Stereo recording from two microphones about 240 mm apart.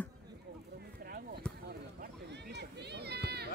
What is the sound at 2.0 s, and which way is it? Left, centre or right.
Run, right.